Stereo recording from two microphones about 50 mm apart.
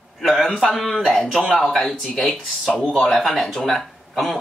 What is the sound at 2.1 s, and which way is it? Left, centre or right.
Speech, left.